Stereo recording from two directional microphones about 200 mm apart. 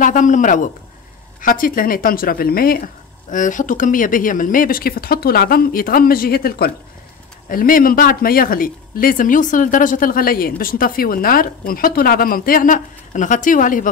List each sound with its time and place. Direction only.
0.0 s a man's voice: 40° left (ahead or behind)